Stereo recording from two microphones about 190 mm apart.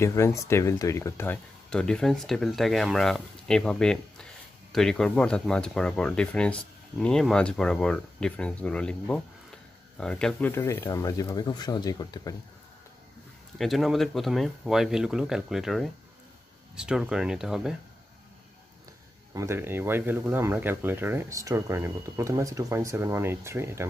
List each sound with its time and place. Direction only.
0.0 s speech: 15° left (ahead or behind)
13.6 s speech: centre (ahead or behind)
19.3 s speech: 15° right (ahead or behind)